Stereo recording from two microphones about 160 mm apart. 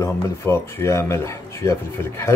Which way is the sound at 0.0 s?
15° left (ahead or behind).